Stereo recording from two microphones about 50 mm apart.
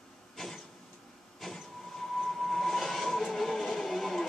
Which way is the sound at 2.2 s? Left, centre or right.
Centre.